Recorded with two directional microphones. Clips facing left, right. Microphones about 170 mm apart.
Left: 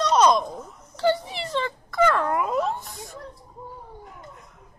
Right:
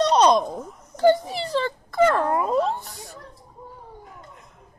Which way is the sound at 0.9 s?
45° right (ahead or behind).